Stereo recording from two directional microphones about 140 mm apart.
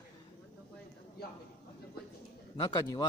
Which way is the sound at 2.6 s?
30° left (ahead or behind).